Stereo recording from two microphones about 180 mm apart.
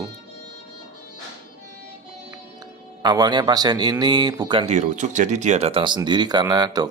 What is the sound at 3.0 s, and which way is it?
Speech, 25° right (ahead or behind).